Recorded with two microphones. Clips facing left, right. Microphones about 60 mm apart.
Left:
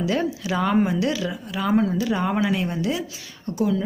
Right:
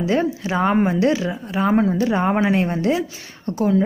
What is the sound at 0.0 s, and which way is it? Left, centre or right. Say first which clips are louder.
Speech: right 4 dB; right.